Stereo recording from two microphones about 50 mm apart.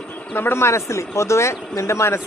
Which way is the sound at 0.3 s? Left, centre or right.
Left.